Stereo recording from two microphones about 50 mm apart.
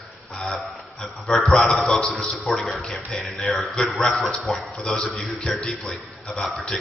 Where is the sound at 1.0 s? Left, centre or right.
Centre.